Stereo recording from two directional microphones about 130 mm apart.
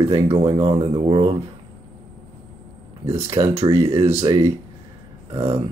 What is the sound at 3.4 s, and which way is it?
Speech, 40° right (ahead or behind).